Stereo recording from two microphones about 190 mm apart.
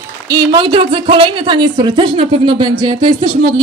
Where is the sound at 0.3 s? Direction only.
25° right (ahead or behind).